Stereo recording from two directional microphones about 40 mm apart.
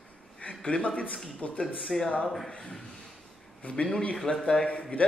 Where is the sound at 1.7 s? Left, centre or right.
Centre.